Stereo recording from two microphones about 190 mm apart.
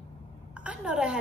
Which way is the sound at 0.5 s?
5° right (ahead or behind).